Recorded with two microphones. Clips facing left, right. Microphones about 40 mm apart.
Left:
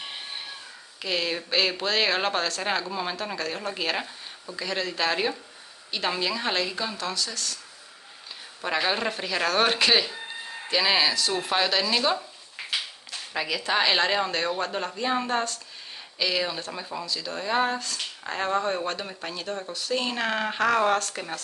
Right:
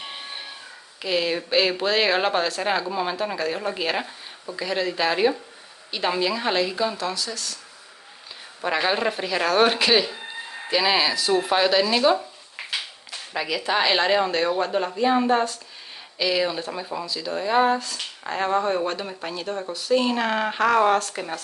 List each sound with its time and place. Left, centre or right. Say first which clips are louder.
0.0 s a sound: right 1 dB; centre
1.0 s speech: right 4 dB; centre
8.5 s speech: right 3 dB; centre